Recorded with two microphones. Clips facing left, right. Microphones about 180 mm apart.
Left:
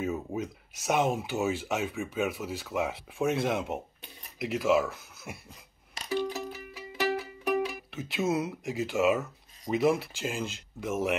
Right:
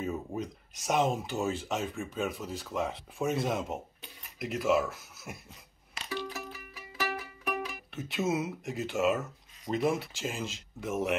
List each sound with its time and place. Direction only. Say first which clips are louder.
0.0 s speech: left 2 dB; 5° left (ahead or behind)
6.0 s music: left 7 dB; 25° left (ahead or behind)
7.9 s speech: even; centre (ahead or behind)